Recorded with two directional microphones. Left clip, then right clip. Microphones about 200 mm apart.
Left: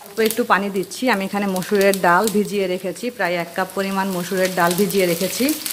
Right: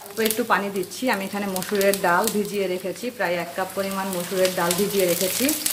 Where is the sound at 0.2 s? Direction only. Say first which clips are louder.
Left 4 dB; 55° left (ahead or behind).